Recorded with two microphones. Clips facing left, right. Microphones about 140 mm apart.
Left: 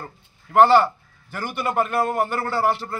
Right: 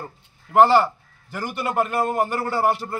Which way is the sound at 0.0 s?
5° right (ahead or behind).